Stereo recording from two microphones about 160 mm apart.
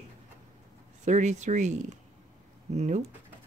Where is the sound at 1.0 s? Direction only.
50° right (ahead or behind).